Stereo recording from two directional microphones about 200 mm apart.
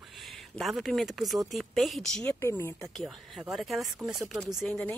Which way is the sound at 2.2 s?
15° left (ahead or behind).